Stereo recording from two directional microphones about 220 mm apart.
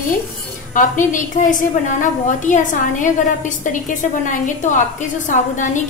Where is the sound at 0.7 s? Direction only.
35° left (ahead or behind).